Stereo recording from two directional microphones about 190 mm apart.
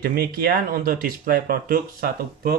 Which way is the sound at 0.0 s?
50° right (ahead or behind).